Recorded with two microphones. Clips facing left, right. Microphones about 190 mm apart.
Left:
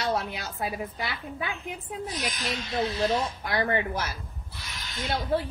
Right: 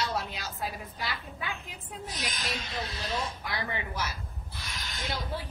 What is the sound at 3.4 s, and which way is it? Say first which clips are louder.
A woman's voice: left 8 dB; 55° left (ahead or behind).